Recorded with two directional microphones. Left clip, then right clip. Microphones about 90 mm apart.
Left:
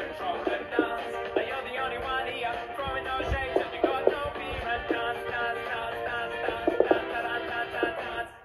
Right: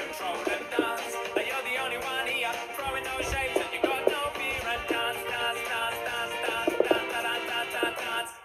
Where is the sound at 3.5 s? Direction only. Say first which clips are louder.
Left 3 dB; 20° left (ahead or behind).